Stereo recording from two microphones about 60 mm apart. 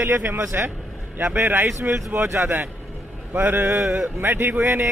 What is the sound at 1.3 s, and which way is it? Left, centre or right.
A man's voice, right.